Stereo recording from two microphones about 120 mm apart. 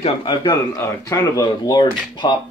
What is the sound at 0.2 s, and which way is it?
Speech, 35° left (ahead or behind).